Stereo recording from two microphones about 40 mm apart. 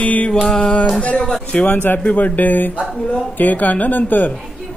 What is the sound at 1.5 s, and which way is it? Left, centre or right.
A man's voice, left.